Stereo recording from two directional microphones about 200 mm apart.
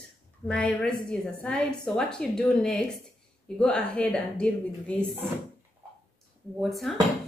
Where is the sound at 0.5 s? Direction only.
5° left (ahead or behind).